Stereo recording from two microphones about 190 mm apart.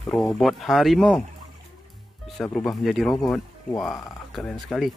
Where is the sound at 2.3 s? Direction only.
Centre (ahead or behind).